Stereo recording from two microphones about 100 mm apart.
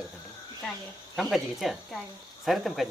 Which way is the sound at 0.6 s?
Centre (ahead or behind).